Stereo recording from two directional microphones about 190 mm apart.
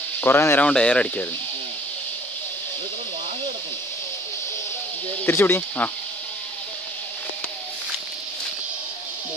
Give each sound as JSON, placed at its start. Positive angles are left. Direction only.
{"t": 0.2, "sound": "speech", "side_deg": 10}
{"t": 5.2, "sound": "speech", "side_deg": 10}